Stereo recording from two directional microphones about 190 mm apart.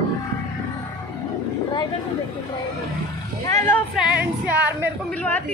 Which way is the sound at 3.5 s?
15° left (ahead or behind).